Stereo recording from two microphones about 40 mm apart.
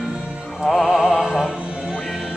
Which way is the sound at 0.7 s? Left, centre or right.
Centre.